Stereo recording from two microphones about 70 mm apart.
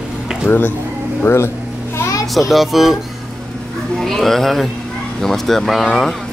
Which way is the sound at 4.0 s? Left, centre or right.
Centre.